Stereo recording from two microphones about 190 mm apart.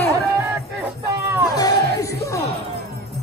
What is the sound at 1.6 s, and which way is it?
Music, 15° left (ahead or behind).